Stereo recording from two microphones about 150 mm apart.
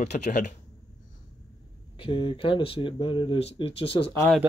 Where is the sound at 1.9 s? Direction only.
35° left (ahead or behind).